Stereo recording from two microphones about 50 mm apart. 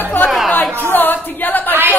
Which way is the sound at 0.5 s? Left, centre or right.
Left.